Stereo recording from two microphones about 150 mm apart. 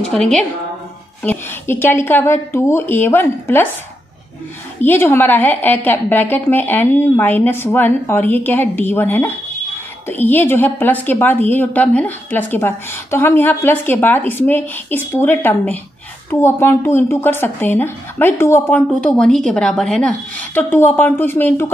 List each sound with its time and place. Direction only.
0.1 s a woman's voice: 5° left (ahead or behind)
4.8 s a woman's voice: 15° left (ahead or behind)